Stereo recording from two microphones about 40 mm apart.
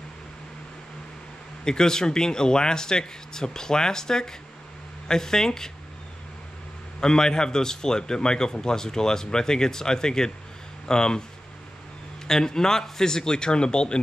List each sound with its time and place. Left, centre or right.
1.6 s a man's voice: centre
7.0 s a man's voice: centre
12.3 s a man's voice: centre